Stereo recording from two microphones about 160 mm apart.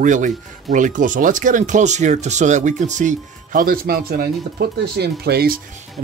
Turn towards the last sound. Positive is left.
turn(degrees=-70)  # may be behind; listen again after turning